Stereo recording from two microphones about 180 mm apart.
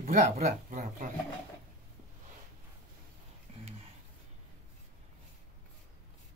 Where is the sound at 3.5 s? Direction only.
35° right (ahead or behind).